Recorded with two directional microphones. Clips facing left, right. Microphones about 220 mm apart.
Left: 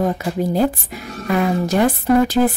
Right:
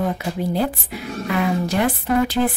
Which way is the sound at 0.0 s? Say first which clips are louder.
Left 3 dB; 45° left (ahead or behind).